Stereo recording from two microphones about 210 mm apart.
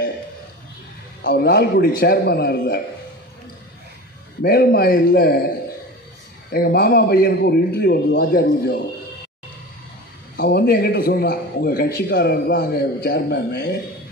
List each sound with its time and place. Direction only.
1.2 s a man's voice: 50° left (ahead or behind)
4.4 s a man's voice: 45° left (ahead or behind)
6.5 s a man's voice: 45° left (ahead or behind)
10.3 s a man's voice: 50° left (ahead or behind)